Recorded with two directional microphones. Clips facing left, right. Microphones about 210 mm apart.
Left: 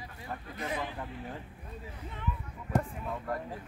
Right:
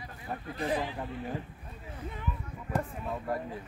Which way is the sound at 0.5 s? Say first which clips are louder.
Right 5 dB; 35° right (ahead or behind).